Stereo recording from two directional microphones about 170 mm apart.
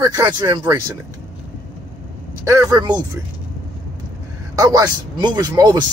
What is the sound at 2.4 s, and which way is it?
Speech, 20° right (ahead or behind).